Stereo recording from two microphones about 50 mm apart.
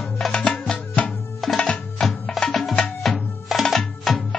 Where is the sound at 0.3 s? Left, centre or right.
Centre.